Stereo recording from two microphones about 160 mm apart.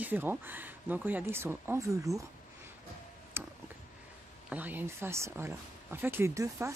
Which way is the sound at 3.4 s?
15° right (ahead or behind).